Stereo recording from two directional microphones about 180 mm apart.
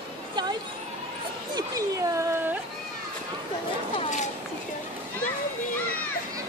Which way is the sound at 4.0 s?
40° left (ahead or behind).